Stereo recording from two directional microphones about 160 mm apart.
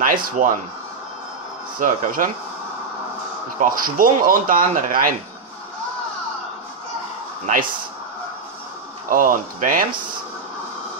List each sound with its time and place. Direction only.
0.0 s speech: 60° right (ahead or behind)
1.8 s speech: 60° right (ahead or behind)
3.5 s speech: 60° right (ahead or behind)
9.1 s speech: 55° right (ahead or behind)